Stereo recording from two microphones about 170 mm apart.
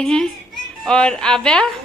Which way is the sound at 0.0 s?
5° left (ahead or behind).